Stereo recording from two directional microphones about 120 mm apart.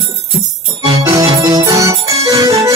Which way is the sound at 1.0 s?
30° right (ahead or behind).